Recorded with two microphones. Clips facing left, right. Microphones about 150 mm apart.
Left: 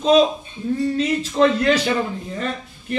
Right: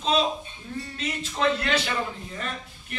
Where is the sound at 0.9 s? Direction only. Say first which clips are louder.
Left 7 dB; 40° left (ahead or behind).